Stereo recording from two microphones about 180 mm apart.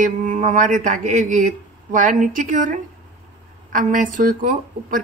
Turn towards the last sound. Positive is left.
turn(degrees=-45)  # may be behind; listen again after turning